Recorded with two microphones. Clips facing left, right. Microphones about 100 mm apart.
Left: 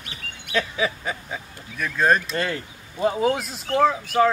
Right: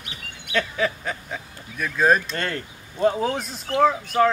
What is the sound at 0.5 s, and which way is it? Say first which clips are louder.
Speech: even; 5° left (ahead or behind).